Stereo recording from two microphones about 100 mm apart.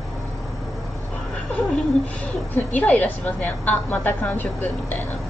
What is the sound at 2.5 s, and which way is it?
A woman's voice, 15° left (ahead or behind).